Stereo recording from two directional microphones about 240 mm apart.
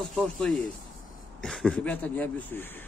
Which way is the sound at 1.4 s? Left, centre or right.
Centre.